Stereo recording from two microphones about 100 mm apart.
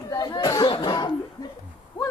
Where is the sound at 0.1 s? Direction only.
40° left (ahead or behind).